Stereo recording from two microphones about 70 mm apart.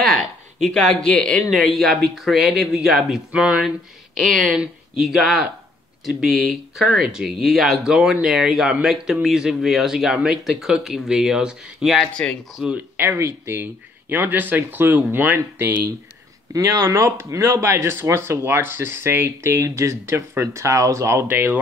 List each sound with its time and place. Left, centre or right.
0.0 s a sound: centre
0.7 s speech: centre
12.2 s speech: centre
12.7 s speech: right
16.5 s speech: right
21.3 s speech: right